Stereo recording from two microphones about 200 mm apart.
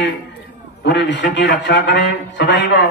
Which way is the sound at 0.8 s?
60° left (ahead or behind).